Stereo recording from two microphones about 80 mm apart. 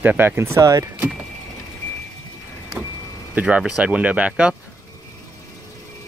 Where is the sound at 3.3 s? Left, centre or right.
Centre.